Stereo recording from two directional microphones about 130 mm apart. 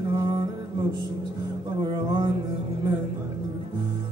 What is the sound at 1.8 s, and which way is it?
Music, 35° right (ahead or behind).